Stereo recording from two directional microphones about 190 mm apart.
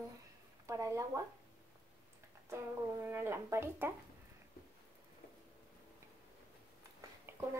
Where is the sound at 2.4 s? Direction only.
15° right (ahead or behind).